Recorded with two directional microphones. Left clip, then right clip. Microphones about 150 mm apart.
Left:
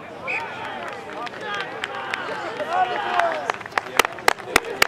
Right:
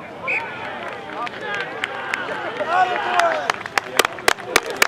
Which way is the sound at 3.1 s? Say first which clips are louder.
Right 4 dB; 30° right (ahead or behind).